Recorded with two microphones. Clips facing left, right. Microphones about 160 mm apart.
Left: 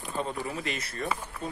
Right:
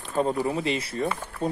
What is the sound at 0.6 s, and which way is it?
Speech, 30° right (ahead or behind).